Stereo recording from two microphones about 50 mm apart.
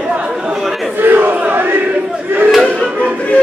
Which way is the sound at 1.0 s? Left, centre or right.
Right.